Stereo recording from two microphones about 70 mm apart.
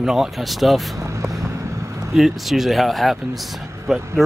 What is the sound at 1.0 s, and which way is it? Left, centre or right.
Vehicle, right.